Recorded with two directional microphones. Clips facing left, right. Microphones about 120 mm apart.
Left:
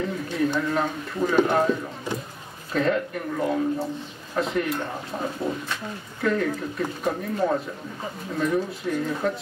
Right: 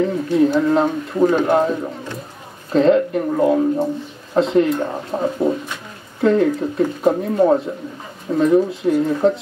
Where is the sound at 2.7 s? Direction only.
30° right (ahead or behind).